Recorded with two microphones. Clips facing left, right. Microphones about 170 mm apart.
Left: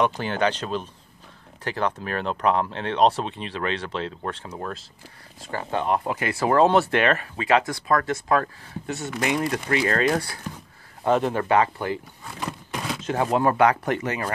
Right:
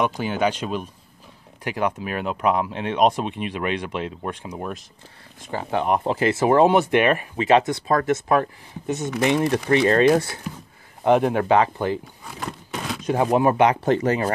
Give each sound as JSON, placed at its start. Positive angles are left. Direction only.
{"t": 0.0, "sound": "speech", "side_deg": -10}
{"t": 11.1, "sound": "speech", "side_deg": -15}
{"t": 12.4, "sound": "a sound", "side_deg": 0}
{"t": 13.0, "sound": "speech", "side_deg": -15}
{"t": 13.9, "sound": "speech", "side_deg": -30}